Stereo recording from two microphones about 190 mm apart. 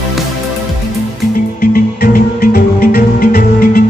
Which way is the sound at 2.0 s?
50° left (ahead or behind).